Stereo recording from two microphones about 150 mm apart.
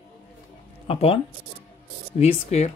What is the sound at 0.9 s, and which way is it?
Speech, 40° left (ahead or behind).